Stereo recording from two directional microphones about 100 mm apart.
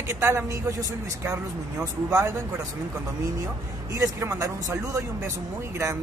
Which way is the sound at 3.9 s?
30° right (ahead or behind).